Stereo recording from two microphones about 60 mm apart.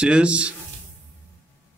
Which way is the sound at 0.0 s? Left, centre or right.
Centre.